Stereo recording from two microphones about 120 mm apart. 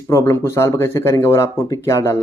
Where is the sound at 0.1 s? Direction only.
25° left (ahead or behind).